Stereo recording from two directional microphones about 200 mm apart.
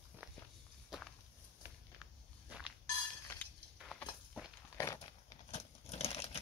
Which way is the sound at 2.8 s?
20° left (ahead or behind).